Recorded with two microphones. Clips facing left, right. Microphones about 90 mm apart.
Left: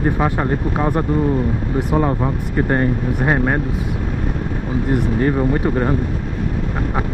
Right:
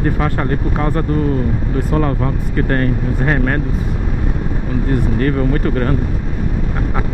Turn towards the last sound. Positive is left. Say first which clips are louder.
# even
turn(degrees=15)  # may be behind; listen again after turning